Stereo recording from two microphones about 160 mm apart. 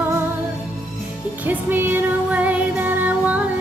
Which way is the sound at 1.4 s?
10° right (ahead or behind).